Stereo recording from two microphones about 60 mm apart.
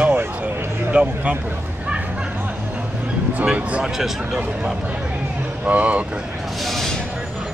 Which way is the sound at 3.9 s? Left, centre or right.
Centre.